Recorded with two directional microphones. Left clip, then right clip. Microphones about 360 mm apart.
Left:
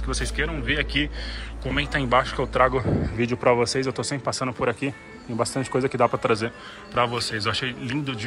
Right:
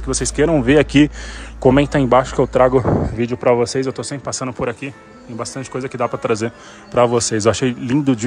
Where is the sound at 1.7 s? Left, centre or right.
Centre.